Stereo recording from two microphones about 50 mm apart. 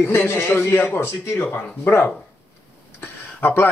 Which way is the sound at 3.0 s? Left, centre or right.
Left.